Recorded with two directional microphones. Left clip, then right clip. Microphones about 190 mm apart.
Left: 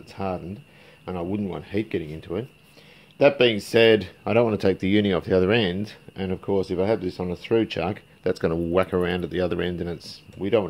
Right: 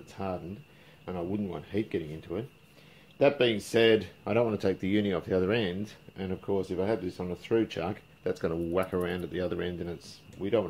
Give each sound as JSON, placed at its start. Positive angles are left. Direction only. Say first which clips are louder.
{"t": 0.1, "sound": "speech", "louder": "left 6 dB", "side_deg": 55}